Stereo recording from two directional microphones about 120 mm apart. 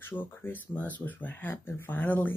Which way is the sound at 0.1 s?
15° left (ahead or behind).